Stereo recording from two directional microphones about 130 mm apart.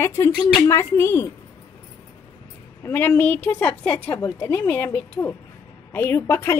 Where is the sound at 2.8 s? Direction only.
15° left (ahead or behind).